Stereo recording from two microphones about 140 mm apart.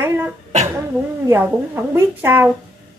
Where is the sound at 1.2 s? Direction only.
15° right (ahead or behind).